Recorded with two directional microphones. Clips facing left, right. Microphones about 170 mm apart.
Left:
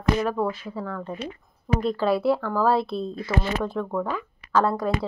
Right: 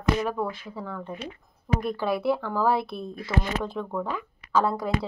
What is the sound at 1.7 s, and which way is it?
Speech, 15° right (ahead or behind).